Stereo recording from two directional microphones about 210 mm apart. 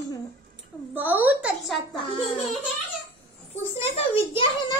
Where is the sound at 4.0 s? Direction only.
25° left (ahead or behind).